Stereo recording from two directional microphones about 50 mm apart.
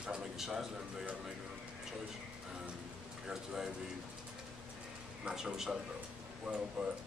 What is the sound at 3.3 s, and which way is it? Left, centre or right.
Speech, centre.